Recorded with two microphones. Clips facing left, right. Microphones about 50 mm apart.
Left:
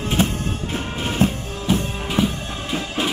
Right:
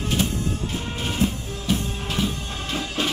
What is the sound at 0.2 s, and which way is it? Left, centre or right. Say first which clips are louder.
Music: left 3 dB; left.